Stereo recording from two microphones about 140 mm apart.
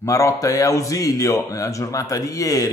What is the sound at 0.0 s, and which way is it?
A man's voice, 25° left (ahead or behind).